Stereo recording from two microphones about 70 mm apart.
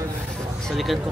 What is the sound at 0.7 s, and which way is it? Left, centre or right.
Speech, centre.